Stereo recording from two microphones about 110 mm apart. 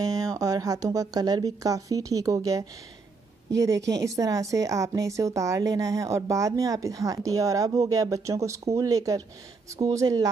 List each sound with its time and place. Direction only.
0.0 s speech: 35° right (ahead or behind)
3.6 s a woman's voice: 30° right (ahead or behind)